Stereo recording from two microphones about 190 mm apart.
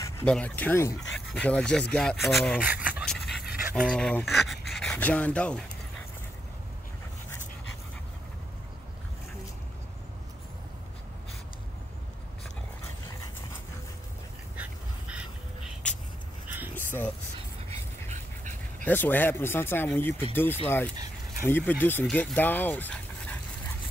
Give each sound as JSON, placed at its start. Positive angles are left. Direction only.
{"t": 0.0, "sound": "speech", "side_deg": 5}
{"t": 3.1, "sound": "dog", "side_deg": 0}
{"t": 3.7, "sound": "speech", "side_deg": 5}
{"t": 14.6, "sound": "duck", "side_deg": -5}
{"t": 16.4, "sound": "a sound", "side_deg": -10}
{"t": 16.7, "sound": "a sound", "side_deg": 10}
{"t": 17.6, "sound": "dog", "side_deg": -40}
{"t": 18.9, "sound": "speech", "side_deg": 10}